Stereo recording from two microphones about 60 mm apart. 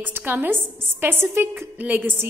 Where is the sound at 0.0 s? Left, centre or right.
Right.